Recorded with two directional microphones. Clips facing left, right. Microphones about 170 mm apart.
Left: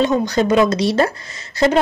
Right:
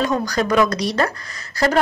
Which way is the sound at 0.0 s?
25° left (ahead or behind).